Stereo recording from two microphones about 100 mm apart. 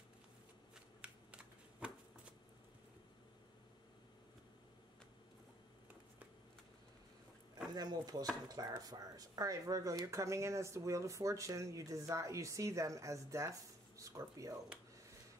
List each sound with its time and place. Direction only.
1.0 s shuffling cards: 10° right (ahead or behind)
7.7 s speech: 45° right (ahead or behind)